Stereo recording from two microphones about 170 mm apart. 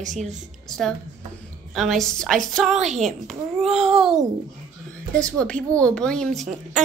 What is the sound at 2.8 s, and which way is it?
Music, 45° right (ahead or behind).